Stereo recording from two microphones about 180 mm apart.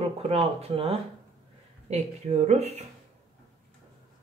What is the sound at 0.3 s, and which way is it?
Speech, 35° right (ahead or behind).